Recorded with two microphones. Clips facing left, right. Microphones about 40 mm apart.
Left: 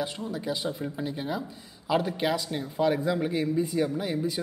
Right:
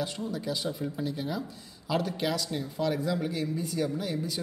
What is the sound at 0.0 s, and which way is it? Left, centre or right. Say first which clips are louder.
Speech: left 1 dB; centre.